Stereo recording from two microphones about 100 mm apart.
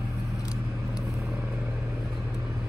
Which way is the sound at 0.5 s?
5° right (ahead or behind).